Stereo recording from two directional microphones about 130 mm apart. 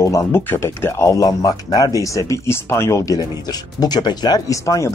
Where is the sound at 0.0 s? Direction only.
25° left (ahead or behind).